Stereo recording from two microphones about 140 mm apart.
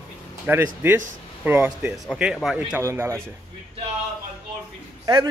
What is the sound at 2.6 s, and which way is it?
Speech, 15° right (ahead or behind).